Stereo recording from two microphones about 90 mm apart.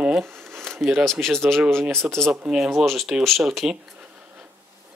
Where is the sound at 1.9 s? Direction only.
30° right (ahead or behind).